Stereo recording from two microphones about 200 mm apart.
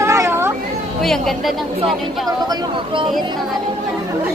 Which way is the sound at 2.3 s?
20° right (ahead or behind).